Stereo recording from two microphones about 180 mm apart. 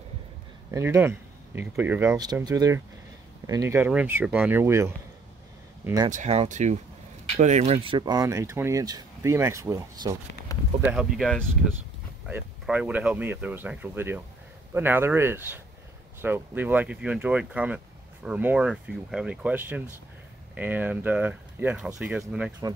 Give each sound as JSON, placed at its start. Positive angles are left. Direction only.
{"t": 0.7, "sound": "speech", "side_deg": -15}
{"t": 2.1, "sound": "speech", "side_deg": -20}
{"t": 6.0, "sound": "speech", "side_deg": -40}
{"t": 10.9, "sound": "speech", "side_deg": 0}
{"t": 22.6, "sound": "speech", "side_deg": -20}